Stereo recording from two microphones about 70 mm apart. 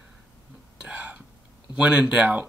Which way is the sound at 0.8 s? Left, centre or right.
Centre.